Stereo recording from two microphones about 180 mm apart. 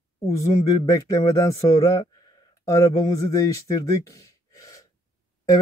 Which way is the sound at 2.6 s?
20° left (ahead or behind).